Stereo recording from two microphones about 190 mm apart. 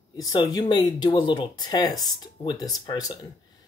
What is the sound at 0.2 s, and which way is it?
Speech, 20° left (ahead or behind).